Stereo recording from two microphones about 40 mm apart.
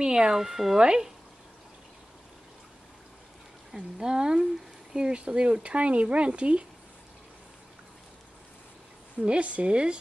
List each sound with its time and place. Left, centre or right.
0.0 s speech: centre
0.4 s speech: centre
0.7 s speech: centre
3.7 s speech: centre
9.2 s speech: right